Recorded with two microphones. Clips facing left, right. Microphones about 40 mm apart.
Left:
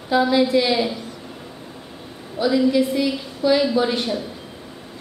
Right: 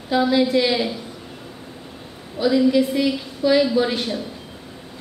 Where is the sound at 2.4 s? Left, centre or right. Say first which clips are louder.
Right 1 dB; centre.